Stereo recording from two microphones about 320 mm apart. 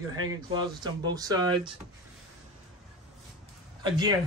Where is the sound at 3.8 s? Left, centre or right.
Centre.